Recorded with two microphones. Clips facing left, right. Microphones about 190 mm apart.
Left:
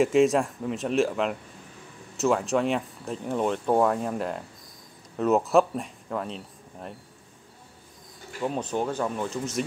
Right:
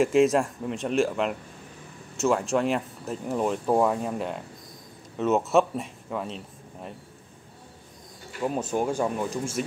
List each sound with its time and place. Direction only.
0.0 s speech: centre (ahead or behind)
8.4 s speech: 5° right (ahead or behind)